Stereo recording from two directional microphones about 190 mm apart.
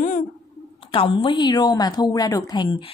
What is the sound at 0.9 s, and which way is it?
A woman's voice, 25° left (ahead or behind).